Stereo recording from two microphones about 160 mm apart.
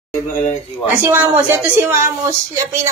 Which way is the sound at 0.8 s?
10° right (ahead or behind).